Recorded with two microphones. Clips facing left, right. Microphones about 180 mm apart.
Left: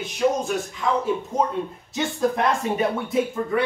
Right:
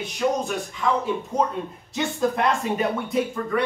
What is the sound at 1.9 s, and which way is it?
Speech, centre (ahead or behind).